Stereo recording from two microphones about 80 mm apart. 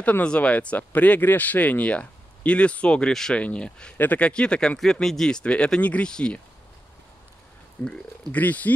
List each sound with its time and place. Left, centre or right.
0.0 s speech: centre
7.8 s speech: centre